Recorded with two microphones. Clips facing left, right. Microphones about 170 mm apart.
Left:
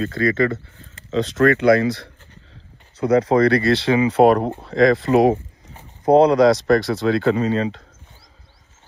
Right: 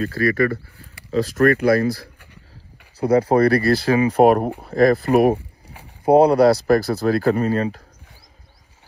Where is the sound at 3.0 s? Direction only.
30° right (ahead or behind).